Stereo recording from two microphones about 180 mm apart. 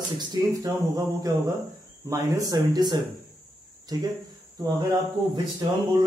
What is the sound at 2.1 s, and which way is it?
Speech, 20° right (ahead or behind).